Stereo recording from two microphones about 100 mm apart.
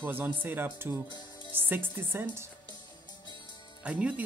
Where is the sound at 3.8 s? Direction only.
15° right (ahead or behind).